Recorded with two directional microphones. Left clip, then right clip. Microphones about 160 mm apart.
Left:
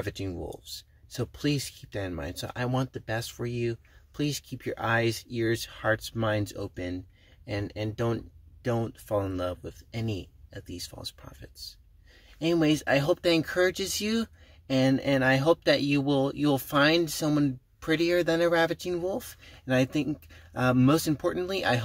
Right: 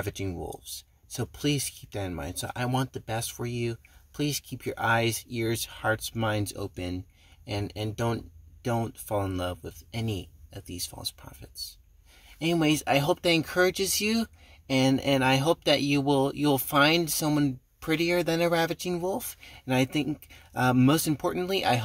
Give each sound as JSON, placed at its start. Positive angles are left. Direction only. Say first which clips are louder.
{"t": 0.0, "sound": "speech", "louder": "right 1 dB", "side_deg": -5}